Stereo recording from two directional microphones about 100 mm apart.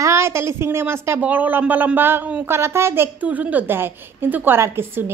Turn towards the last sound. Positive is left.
turn(degrees=-25)  # may be behind; listen again after turning